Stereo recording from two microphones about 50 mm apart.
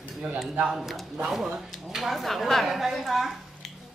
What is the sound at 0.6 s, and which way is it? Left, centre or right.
Speech, centre.